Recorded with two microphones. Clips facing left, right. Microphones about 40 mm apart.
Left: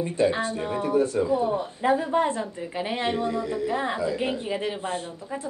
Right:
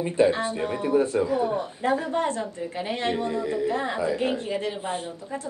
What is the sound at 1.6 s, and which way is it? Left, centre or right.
A woman's voice, centre.